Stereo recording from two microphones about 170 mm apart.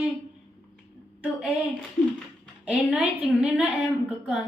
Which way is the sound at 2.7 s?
5° right (ahead or behind).